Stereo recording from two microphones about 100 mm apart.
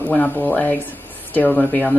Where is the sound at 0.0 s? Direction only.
15° left (ahead or behind).